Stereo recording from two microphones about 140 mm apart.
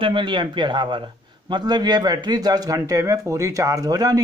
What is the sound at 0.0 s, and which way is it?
A man's voice, 35° right (ahead or behind).